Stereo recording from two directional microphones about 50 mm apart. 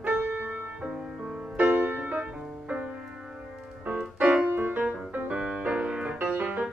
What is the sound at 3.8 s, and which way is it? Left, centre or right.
Music, right.